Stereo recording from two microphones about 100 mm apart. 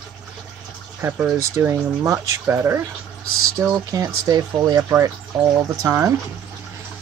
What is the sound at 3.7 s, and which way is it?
Speech, 35° right (ahead or behind).